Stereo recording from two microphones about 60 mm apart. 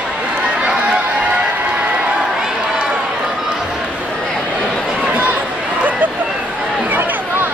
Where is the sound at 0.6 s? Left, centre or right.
Centre.